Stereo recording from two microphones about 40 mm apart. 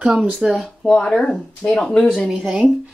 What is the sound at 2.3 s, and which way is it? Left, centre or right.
Speech, right.